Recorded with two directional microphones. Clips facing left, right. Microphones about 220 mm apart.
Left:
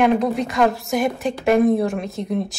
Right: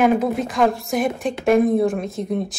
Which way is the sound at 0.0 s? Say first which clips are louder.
Even; 5° right (ahead or behind).